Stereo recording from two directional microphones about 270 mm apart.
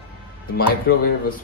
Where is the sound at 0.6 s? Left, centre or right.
Left.